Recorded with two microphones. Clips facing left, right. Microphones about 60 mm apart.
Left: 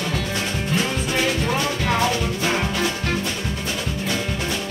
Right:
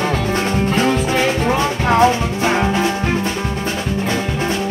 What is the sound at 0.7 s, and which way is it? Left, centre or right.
Music, right.